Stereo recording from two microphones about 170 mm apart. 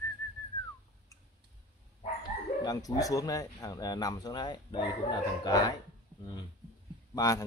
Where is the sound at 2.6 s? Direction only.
20° left (ahead or behind).